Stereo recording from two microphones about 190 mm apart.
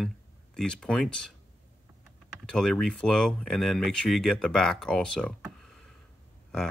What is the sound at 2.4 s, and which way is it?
Speech, 5° left (ahead or behind).